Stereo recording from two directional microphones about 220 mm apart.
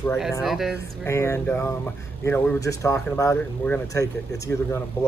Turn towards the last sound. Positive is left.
turn(degrees=15)  # may be behind; listen again after turning